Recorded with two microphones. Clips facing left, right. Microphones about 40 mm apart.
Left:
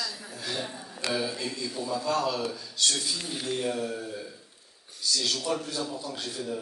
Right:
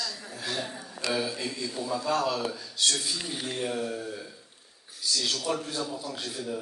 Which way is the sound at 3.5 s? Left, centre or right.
Centre.